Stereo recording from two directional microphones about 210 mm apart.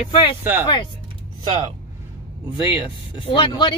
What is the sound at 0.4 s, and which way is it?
Speech, 10° right (ahead or behind).